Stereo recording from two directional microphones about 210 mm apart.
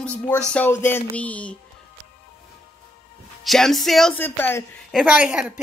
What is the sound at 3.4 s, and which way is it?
A woman's voice, centre (ahead or behind).